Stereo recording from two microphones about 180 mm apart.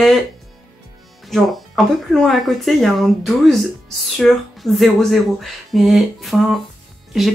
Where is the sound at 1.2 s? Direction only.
Centre (ahead or behind).